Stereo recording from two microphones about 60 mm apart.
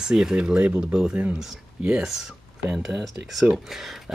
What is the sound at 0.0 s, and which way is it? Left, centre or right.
Speech, centre.